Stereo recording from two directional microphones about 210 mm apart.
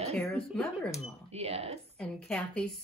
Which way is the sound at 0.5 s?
5° left (ahead or behind).